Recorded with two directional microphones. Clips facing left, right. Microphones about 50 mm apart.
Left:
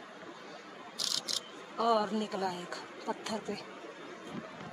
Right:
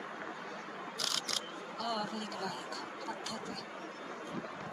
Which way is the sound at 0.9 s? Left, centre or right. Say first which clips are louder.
Right 1 dB; right.